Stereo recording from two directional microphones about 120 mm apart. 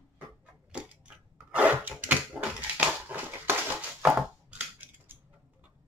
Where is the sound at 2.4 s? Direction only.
10° right (ahead or behind).